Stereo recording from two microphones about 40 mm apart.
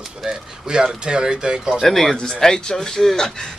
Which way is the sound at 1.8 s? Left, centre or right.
Centre.